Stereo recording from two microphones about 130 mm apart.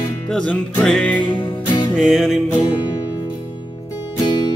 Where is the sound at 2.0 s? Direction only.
Centre (ahead or behind).